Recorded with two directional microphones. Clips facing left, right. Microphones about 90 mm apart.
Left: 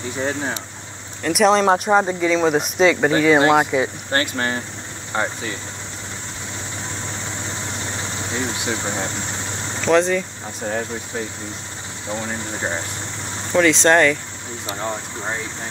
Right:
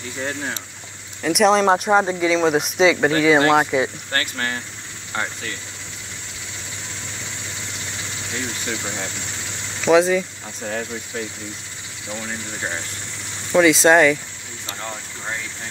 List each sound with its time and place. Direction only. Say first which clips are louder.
0.2 s speech: left 3 dB; 20° left (ahead or behind)
1.2 s speech: even; centre (ahead or behind)
4.1 s speech: left 4 dB; 25° left (ahead or behind)
7.4 s vehicle: left 5 dB; 40° left (ahead or behind)
8.7 s speech: left 4 dB; 35° left (ahead or behind)
9.8 s speech: right 2 dB; 5° right (ahead or behind)
10.6 s speech: left 2 dB; 15° left (ahead or behind)
12.1 s speech: left 4 dB; 30° left (ahead or behind)
13.5 s speech: right 1 dB; 5° right (ahead or behind)
14.7 s speech: left 5 dB; 25° left (ahead or behind)